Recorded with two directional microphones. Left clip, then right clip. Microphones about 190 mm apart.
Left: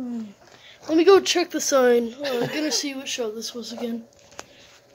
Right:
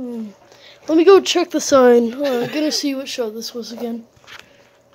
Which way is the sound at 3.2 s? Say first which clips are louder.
Right 4 dB; 55° right (ahead or behind).